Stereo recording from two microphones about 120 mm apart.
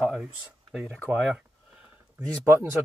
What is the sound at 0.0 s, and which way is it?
Speech, 5° right (ahead or behind).